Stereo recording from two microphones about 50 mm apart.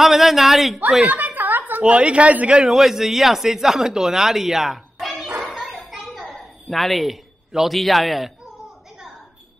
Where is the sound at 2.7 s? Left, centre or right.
Centre.